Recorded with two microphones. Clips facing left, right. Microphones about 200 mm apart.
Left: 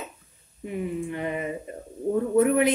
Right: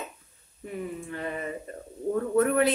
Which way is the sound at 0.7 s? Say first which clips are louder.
Left 5 dB; 15° left (ahead or behind).